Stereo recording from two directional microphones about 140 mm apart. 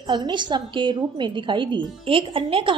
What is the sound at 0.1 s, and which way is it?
A woman's voice, 35° right (ahead or behind).